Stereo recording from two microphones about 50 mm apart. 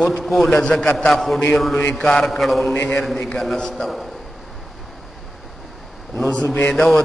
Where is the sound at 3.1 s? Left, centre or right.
Centre.